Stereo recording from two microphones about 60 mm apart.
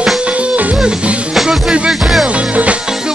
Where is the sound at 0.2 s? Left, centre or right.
Right; by 1.6 s centre.